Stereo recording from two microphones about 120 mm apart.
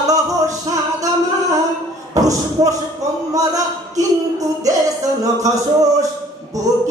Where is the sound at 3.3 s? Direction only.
30° right (ahead or behind).